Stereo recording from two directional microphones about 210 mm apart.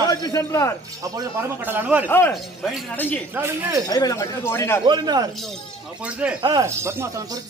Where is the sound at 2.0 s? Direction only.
10° left (ahead or behind).